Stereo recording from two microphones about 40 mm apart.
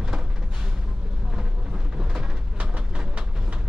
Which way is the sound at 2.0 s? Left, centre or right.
Centre.